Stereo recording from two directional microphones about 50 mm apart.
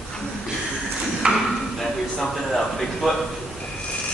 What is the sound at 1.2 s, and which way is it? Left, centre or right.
Ping, centre.